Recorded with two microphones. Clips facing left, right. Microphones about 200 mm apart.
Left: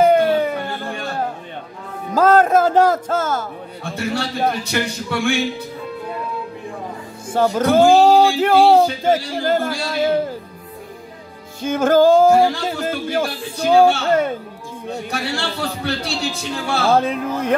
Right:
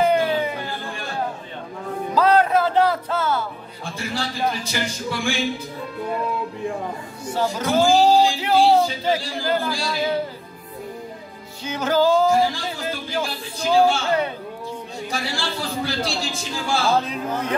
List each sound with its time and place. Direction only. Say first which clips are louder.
0.0 s a sound: left 5 dB; 45° left (ahead or behind)
2.1 s music: left 4 dB; 45° left (ahead or behind)
3.8 s a man's voice: left 5 dB; 65° left (ahead or behind)
7.2 s speech: left 6 dB; 50° left (ahead or behind)
11.6 s a man's voice: left 6 dB; 50° left (ahead or behind)